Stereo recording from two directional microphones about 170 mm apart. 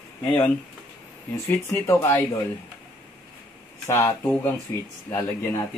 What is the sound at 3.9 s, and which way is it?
Speech, 15° left (ahead or behind).